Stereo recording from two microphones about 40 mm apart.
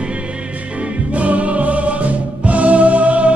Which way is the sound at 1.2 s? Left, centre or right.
Right.